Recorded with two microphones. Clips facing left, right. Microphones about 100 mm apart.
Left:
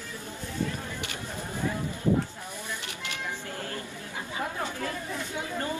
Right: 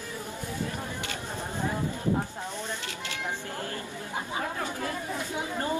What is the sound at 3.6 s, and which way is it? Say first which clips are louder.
Chatter: right 1 dB; 25° right (ahead or behind).